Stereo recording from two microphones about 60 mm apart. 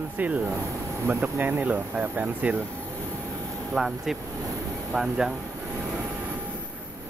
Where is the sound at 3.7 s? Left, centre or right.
Centre.